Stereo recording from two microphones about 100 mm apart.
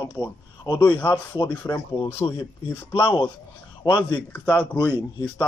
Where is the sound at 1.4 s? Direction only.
20° left (ahead or behind).